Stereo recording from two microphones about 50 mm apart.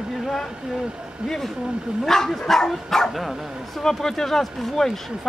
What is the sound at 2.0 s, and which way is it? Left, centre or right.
Speech, centre.